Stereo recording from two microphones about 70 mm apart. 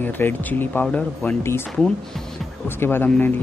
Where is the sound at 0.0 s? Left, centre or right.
Left.